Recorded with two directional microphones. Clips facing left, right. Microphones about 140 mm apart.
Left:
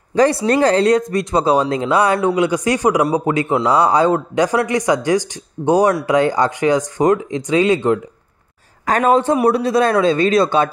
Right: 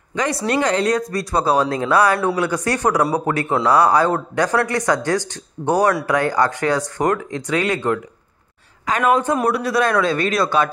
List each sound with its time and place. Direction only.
0.1 s speech: 35° left (ahead or behind); by 8.0 s 20° left (ahead or behind)
8.8 s a woman's voice: 35° left (ahead or behind)